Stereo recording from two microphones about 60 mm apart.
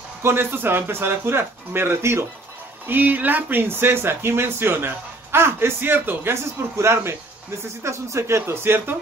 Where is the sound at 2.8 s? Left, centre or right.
Right.